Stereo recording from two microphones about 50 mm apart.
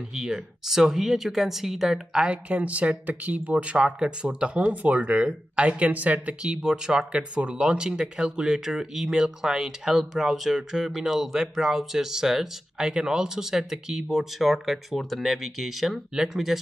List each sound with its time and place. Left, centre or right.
0.1 s speech: centre
2.2 s speech: right
6.4 s speech: centre
14.4 s speech: centre